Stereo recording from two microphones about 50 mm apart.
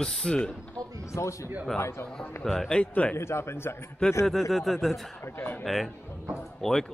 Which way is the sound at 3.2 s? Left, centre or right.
Left.